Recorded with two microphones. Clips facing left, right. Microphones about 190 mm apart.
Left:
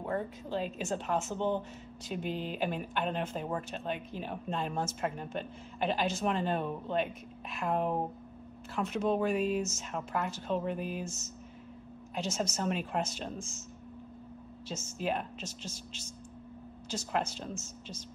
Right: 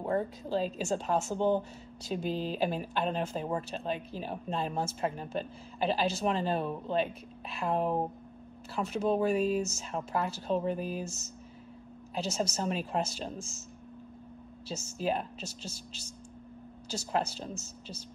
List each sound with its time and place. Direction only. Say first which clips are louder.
0.0 s speech: right 4 dB; 35° right (ahead or behind)
12.2 s speech: right 1 dB; 35° right (ahead or behind)
14.7 s speech: right 2 dB; 35° right (ahead or behind)